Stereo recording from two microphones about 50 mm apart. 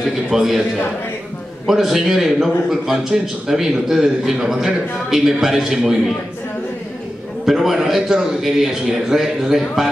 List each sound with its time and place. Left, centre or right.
0.3 s a man's voice: centre
1.7 s a man's voice: centre
7.4 s a man's voice: centre